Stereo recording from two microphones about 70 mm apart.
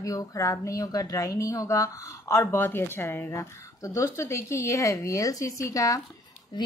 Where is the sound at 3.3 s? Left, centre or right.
Left.